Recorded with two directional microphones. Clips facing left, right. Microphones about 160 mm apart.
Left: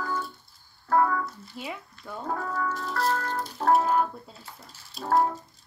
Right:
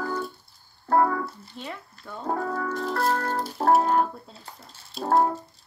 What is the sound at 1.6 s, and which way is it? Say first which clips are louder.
Speech: left 1 dB; 5° left (ahead or behind).